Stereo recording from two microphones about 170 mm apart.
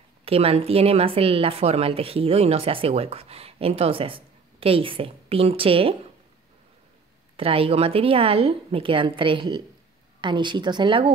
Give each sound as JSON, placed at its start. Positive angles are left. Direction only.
{"t": 0.2, "sound": "a woman's voice", "side_deg": -35}
{"t": 7.3, "sound": "a woman's voice", "side_deg": -35}